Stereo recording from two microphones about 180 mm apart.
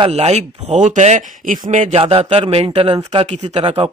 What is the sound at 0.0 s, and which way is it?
Speech, 35° right (ahead or behind).